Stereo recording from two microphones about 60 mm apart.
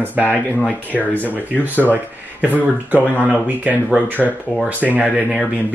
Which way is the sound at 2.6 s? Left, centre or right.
Right.